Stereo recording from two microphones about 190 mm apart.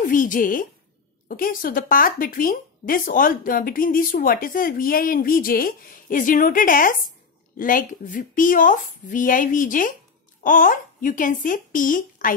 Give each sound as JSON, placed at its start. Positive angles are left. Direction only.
{"t": 0.0, "sound": "speech", "side_deg": 45}